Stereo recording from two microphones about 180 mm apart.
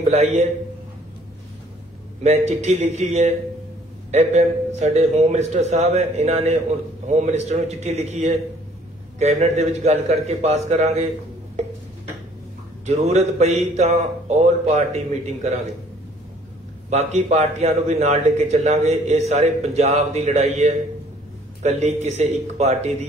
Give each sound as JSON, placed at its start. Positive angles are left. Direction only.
{"t": 0.1, "sound": "a man's voice", "side_deg": -35}
{"t": 2.2, "sound": "a man's voice", "side_deg": -35}
{"t": 12.8, "sound": "a man's voice", "side_deg": -35}
{"t": 16.9, "sound": "a man's voice", "side_deg": -40}